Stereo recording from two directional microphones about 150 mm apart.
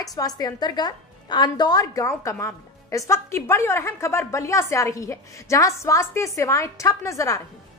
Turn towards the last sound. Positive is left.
turn(degrees=20)  # may be behind; listen again after turning